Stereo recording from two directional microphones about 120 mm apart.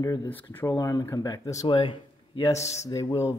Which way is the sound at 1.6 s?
45° left (ahead or behind).